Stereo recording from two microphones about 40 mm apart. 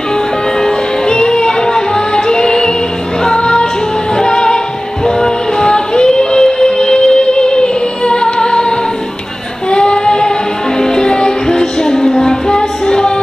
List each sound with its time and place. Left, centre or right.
0.6 s music: centre
9.7 s child singing: left
10.8 s music: centre